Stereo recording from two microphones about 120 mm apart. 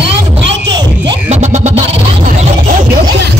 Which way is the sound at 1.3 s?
80° right.